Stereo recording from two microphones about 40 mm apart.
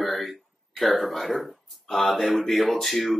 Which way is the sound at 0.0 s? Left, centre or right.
Centre.